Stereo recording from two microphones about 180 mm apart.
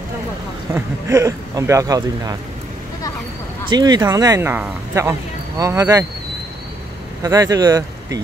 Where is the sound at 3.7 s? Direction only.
20° right (ahead or behind).